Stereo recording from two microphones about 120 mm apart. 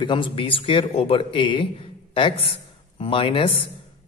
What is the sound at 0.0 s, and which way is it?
Speech, 45° left (ahead or behind).